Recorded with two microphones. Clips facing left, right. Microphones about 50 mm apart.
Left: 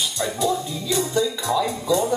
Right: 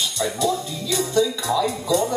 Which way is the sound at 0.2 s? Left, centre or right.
Centre.